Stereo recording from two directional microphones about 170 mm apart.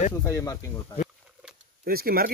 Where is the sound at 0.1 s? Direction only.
15° left (ahead or behind).